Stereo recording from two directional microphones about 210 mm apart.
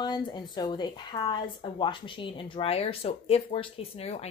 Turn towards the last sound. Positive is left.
turn(degrees=30)  # may be behind; listen again after turning